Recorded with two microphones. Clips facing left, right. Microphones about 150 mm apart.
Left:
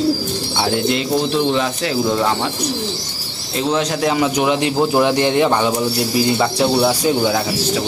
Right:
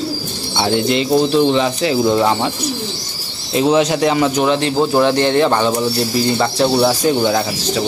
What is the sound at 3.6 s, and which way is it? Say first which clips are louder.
Speech: right 5 dB; 10° right (ahead or behind).